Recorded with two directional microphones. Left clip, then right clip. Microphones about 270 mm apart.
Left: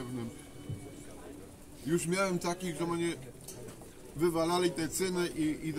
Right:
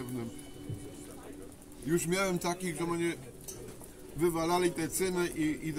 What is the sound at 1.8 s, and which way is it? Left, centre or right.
A man's voice, centre.